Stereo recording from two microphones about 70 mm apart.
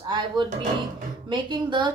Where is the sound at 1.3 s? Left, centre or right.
Right.